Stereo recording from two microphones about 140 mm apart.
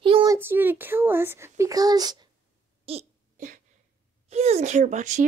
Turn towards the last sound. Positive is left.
turn(degrees=-60)  # may be behind; listen again after turning